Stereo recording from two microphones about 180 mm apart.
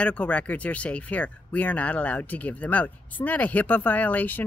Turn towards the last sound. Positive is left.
turn(degrees=10)  # may be behind; listen again after turning